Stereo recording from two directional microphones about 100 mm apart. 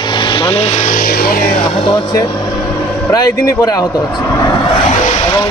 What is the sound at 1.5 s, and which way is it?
Speech, 75° left (ahead or behind).